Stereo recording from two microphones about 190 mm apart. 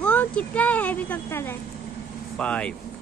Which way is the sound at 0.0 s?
5° left (ahead or behind).